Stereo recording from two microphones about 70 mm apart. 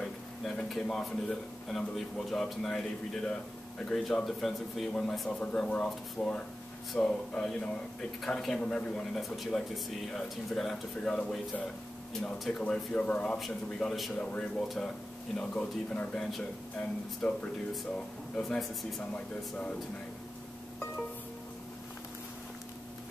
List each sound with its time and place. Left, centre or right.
0.0 s speech: centre
3.8 s speech: centre
5.4 s speech: centre
13.7 s speech: centre
14.1 s speech: centre
18.4 s speech: centre
19.1 s speech: centre